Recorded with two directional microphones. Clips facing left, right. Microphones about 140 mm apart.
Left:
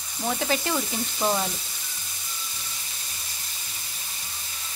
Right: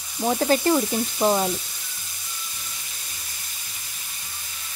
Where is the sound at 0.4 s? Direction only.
40° right (ahead or behind).